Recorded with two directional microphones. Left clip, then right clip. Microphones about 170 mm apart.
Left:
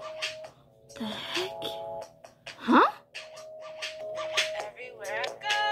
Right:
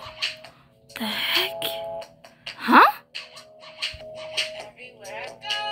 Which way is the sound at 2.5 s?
5° right (ahead or behind).